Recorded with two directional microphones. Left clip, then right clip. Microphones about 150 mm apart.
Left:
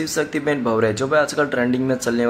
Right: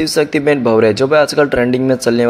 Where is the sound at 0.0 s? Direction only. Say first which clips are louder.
Right 8 dB; 30° right (ahead or behind).